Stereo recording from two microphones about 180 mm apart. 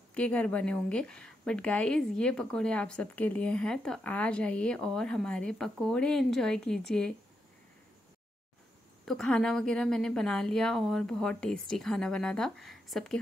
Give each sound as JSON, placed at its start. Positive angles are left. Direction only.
{"t": 0.1, "sound": "a woman's voice", "side_deg": 5}
{"t": 9.0, "sound": "a woman's voice", "side_deg": 0}